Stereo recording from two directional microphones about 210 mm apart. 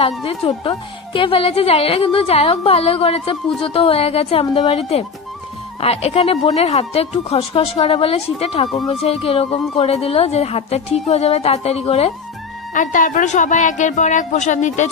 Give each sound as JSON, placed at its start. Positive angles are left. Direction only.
{"t": 0.2, "sound": "a woman's voice", "side_deg": 25}